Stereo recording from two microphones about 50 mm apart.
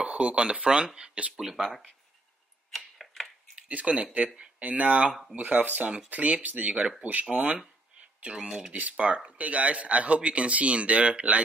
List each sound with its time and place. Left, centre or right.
0.0 s speech: right
1.4 s speech: centre
2.7 s tick-tock: centre
3.5 s speech: right
8.7 s speech: right